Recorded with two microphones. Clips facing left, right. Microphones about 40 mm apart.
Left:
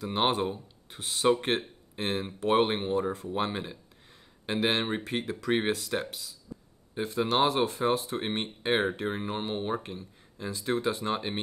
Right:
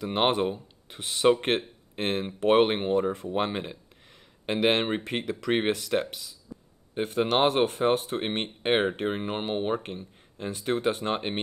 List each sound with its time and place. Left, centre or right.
0.0 s speech: right